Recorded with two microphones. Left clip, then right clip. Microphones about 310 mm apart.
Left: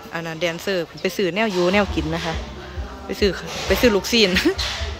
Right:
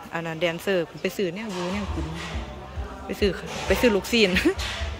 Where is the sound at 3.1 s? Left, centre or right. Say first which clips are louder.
Left 4 dB; centre.